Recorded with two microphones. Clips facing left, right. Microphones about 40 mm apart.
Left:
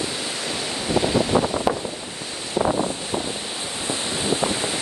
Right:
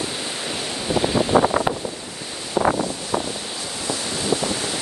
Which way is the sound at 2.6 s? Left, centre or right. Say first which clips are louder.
Right 2 dB; right.